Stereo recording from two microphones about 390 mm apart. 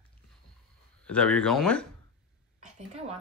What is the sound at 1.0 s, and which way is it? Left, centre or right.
Speech, centre.